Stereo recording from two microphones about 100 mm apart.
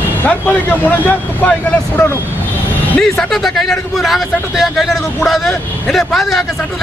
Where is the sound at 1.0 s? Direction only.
15° left (ahead or behind).